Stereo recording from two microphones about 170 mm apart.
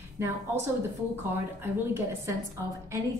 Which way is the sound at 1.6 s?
15° right (ahead or behind).